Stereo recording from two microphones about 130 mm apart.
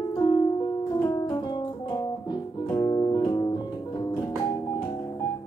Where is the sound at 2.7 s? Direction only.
30° left (ahead or behind).